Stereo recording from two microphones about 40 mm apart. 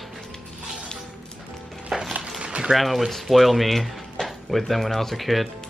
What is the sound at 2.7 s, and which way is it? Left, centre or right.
Speech, centre.